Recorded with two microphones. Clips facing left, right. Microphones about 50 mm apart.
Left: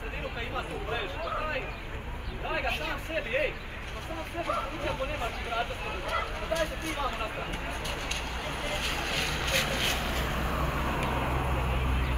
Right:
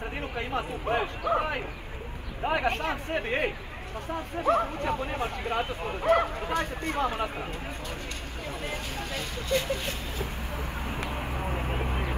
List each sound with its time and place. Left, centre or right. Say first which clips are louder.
0.4 s speech: right 5 dB; right
4.5 s speech: right 8 dB; right
5.9 s speech: right 8 dB; right
6.4 s speech: right 1 dB; left
7.0 s speech: right 5 dB; right
8.5 s speech: left 1 dB; left
11.1 s vehicle: left 2 dB; left